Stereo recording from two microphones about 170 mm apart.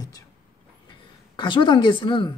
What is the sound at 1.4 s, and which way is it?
Speech, 25° left (ahead or behind).